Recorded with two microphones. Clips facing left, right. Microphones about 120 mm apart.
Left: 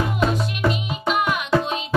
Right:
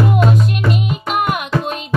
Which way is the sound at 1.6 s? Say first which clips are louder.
Right 2 dB; centre (ahead or behind).